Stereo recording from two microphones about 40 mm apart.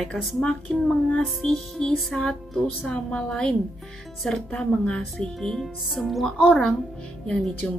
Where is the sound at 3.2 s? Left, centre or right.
Centre.